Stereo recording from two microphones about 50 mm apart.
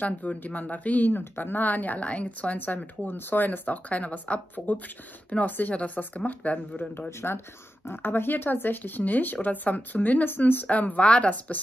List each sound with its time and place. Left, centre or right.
0.0 s speech: left
6.8 s speech: left
7.1 s speech: left